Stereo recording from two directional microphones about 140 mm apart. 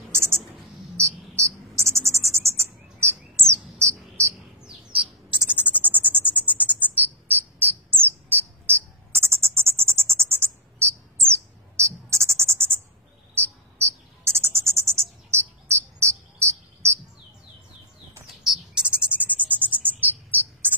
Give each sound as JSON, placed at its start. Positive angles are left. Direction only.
{"t": 0.1, "sound": "a sound", "side_deg": -20}
{"t": 0.9, "sound": "cricket", "side_deg": -20}
{"t": 5.6, "sound": "a sound", "side_deg": -10}
{"t": 9.9, "sound": "bird", "side_deg": -15}
{"t": 13.7, "sound": "bird", "side_deg": -20}
{"t": 18.4, "sound": "bird", "side_deg": -5}